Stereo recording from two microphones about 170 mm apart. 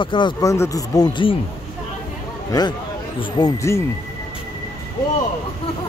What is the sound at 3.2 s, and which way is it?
Speech, 25° left (ahead or behind).